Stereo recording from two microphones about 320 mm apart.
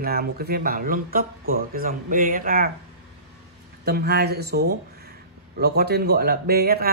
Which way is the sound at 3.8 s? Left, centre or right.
Right.